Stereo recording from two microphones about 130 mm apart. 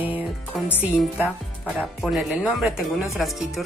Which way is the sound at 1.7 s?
Centre (ahead or behind).